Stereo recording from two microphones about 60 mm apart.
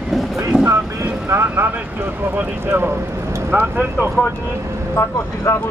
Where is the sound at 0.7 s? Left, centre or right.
Right.